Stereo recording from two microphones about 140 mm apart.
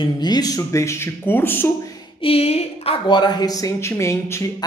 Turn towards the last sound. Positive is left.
turn(degrees=20)  # may be behind; listen again after turning